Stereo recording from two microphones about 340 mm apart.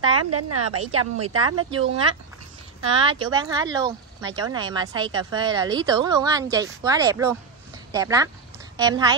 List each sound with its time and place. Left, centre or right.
0.2 s a woman's voice: right
1.6 s a woman's voice: centre